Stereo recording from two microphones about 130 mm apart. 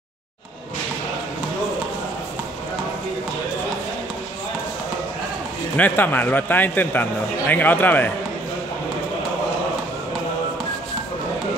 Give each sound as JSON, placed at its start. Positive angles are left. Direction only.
{"t": 5.8, "sound": "a man's voice", "side_deg": 15}